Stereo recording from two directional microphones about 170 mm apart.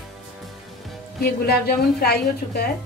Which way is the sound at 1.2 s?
65° left (ahead or behind).